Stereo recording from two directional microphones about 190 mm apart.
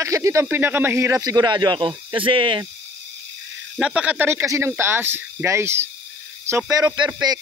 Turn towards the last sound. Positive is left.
turn(degrees=-20)  # may be behind; listen again after turning